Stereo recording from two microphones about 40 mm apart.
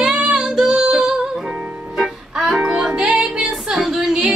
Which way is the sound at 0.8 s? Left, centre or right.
Centre.